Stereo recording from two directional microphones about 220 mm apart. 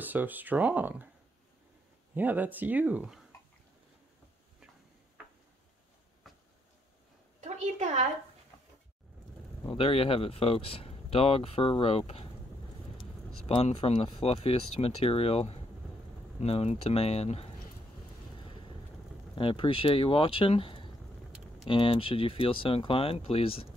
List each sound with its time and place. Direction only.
0.0 s speech: 10° right (ahead or behind)
2.1 s speech: 10° right (ahead or behind)
6.2 s a sound: centre (ahead or behind)
7.3 s a sound: 30° right (ahead or behind)
9.7 s speech: 25° left (ahead or behind)
13.5 s speech: 25° left (ahead or behind)
19.3 s speech: 25° left (ahead or behind)